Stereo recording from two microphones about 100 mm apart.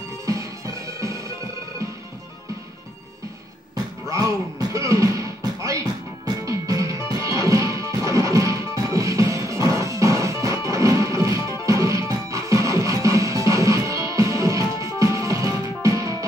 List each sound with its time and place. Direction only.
4.1 s music: 35° right (ahead or behind)